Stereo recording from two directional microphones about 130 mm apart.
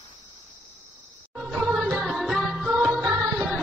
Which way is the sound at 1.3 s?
5° right (ahead or behind).